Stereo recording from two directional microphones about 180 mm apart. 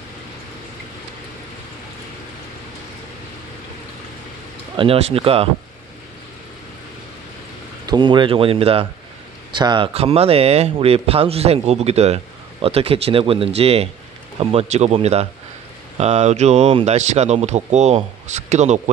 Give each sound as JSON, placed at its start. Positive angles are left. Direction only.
{"t": 4.7, "sound": "speech", "side_deg": -35}
{"t": 7.8, "sound": "speech", "side_deg": -25}